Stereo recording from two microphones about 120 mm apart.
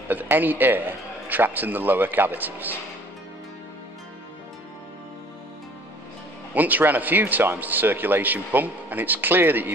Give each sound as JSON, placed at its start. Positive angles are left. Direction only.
{"t": 0.1, "sound": "a man's voice", "side_deg": -15}
{"t": 6.5, "sound": "a man's voice", "side_deg": -15}